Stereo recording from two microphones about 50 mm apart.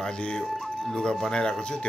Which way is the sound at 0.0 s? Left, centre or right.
Centre.